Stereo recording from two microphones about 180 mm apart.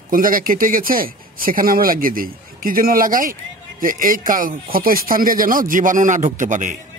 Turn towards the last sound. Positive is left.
turn(degrees=-45)  # may be behind; listen again after turning